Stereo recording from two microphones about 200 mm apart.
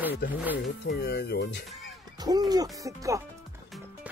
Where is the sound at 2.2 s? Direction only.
20° right (ahead or behind).